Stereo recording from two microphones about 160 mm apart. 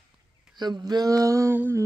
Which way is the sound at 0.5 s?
25° right (ahead or behind).